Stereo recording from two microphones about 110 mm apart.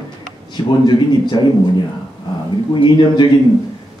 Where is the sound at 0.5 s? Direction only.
40° left (ahead or behind).